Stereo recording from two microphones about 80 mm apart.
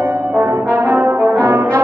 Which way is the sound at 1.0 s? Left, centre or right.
Right.